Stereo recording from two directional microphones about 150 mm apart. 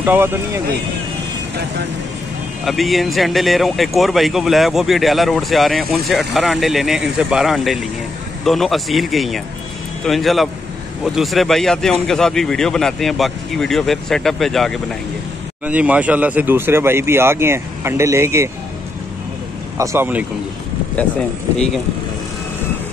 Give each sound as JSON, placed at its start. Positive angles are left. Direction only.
{"t": 0.0, "sound": "speech", "side_deg": -15}
{"t": 2.6, "sound": "speech", "side_deg": 0}
{"t": 15.6, "sound": "speech", "side_deg": -10}
{"t": 19.8, "sound": "speech", "side_deg": -15}
{"t": 21.5, "sound": "speech", "side_deg": 0}